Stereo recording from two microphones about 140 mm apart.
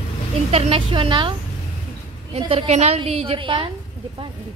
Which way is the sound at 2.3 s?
45° right (ahead or behind).